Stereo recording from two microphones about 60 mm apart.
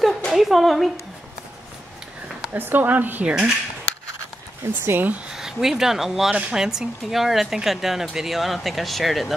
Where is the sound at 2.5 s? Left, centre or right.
Right.